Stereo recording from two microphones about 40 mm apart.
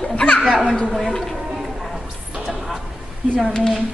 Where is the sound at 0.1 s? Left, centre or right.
Left.